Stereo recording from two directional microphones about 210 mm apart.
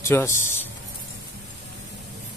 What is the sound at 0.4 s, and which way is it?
Speech, 10° left (ahead or behind).